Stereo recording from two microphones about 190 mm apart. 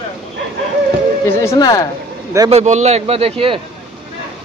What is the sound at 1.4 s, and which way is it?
Speech, 20° left (ahead or behind).